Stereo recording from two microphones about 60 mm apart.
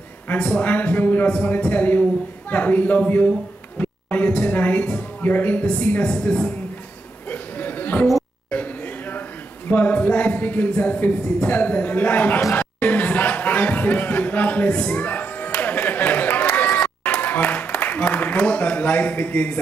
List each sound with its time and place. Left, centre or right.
0.6 s speech: left
3.7 s a sound: left
5.7 s speech: left
7.2 s chatter: left
9.7 s speech: left
12.5 s chatter: left
16.6 s run: left
17.2 s a sound: left